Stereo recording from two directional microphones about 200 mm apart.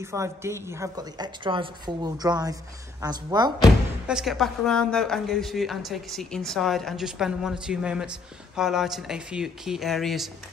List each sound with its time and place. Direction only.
0.0 s a woman's voice: 15° right (ahead or behind)
4.1 s a woman's voice: centre (ahead or behind)